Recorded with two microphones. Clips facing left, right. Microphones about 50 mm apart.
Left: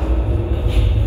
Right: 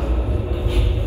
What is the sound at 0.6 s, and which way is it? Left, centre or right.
Vehicle, left.